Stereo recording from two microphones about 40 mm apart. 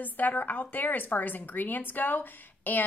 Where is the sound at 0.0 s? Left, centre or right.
Left.